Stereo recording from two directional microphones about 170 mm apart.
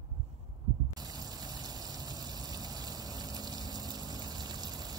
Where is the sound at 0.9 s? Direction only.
20° right (ahead or behind).